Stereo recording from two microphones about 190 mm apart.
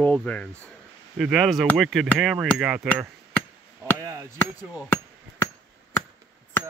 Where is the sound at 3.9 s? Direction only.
15° right (ahead or behind).